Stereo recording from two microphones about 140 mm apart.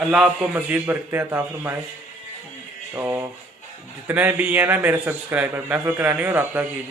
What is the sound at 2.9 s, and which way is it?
A man's voice, 15° right (ahead or behind).